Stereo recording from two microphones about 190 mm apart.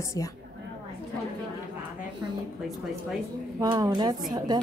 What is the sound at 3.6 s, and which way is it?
A woman's voice, 20° right (ahead or behind).